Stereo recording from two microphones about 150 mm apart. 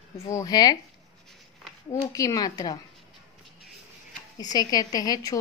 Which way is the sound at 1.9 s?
20° left (ahead or behind).